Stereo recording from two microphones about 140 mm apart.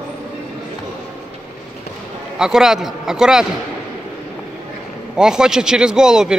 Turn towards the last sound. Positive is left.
turn(degrees=-5)  # may be behind; listen again after turning